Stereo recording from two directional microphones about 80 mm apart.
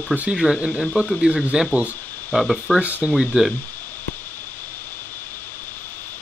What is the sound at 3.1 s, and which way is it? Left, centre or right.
Speech, centre.